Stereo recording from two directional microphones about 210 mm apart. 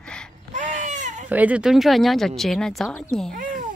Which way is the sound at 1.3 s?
5° right (ahead or behind).